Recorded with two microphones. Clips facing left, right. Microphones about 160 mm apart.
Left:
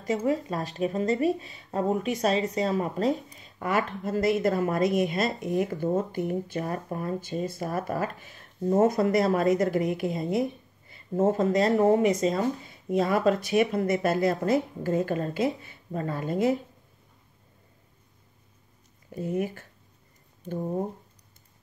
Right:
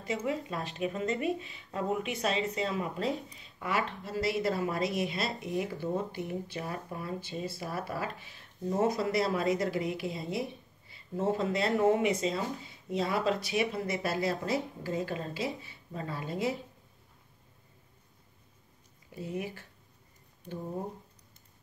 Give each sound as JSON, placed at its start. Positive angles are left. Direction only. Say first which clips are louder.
{"t": 0.0, "sound": "speech", "louder": "left 7 dB", "side_deg": 40}
{"t": 19.1, "sound": "speech", "louder": "left 8 dB", "side_deg": 50}